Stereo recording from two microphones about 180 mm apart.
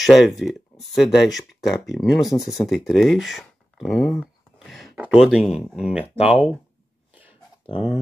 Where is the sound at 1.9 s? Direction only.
Centre (ahead or behind).